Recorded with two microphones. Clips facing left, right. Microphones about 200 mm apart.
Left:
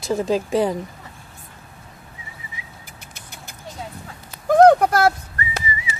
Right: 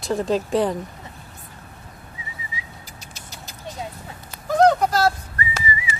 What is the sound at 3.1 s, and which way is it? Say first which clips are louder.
Vehicle: even; 55° left (ahead or behind).